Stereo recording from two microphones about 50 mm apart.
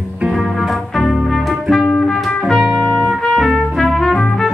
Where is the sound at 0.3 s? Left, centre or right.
Centre.